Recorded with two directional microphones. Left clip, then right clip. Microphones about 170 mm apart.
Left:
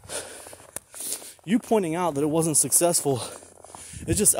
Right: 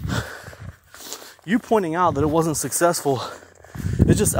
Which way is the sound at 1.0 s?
20° left (ahead or behind).